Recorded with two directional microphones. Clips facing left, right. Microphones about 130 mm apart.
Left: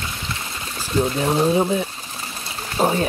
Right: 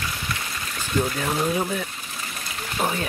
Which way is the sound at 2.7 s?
30° left (ahead or behind).